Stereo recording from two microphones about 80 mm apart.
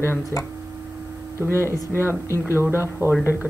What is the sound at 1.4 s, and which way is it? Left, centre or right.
Speech, right.